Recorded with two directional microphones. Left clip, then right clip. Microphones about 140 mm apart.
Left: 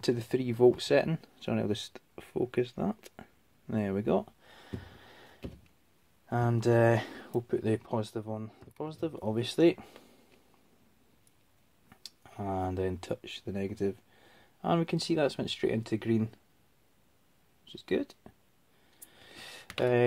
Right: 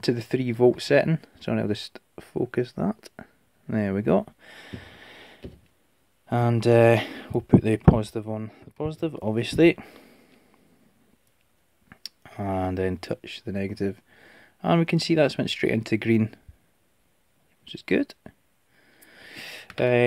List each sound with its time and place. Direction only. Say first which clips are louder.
0.0 s speech: right 5 dB; 35° right (ahead or behind)
11.9 s speech: right 8 dB; 45° right (ahead or behind); by 16.3 s 75° right (ahead or behind)
17.6 s speech: right 7 dB; 70° right (ahead or behind)
19.0 s a sound: right 8 dB; 50° right (ahead or behind)